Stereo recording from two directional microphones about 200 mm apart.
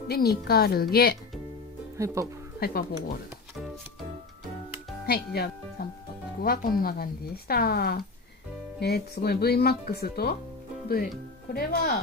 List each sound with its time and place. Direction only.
0.1 s speech: 50° left (ahead or behind)
2.0 s speech: 15° right (ahead or behind)
2.6 s speech: 45° left (ahead or behind)
5.0 s speech: 50° left (ahead or behind)
11.5 s speech: 50° left (ahead or behind)